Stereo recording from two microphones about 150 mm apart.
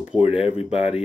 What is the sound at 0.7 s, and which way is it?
Speech, 40° left (ahead or behind).